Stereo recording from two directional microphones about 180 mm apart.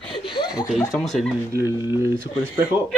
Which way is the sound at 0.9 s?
Centre (ahead or behind).